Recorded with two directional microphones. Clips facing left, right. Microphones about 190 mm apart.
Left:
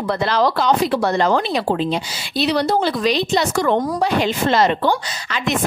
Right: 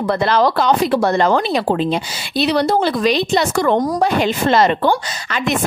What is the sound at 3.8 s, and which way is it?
A woman's voice, 45° right (ahead or behind).